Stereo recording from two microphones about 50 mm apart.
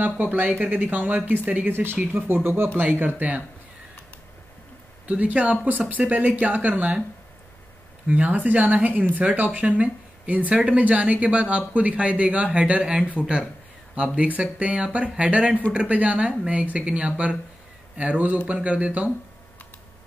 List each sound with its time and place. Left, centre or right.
0.0 s speech: right
1.7 s speech: right
2.8 s speech: right
5.0 s speech: right
8.1 s speech: right
14.1 s speech: right